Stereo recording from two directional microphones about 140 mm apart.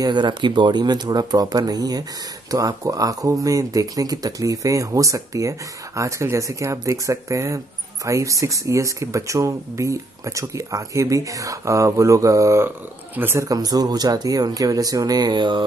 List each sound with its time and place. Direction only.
0.0 s speech: 30° right (ahead or behind)